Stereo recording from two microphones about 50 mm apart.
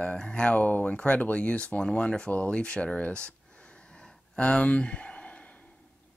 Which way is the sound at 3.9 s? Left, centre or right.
Centre.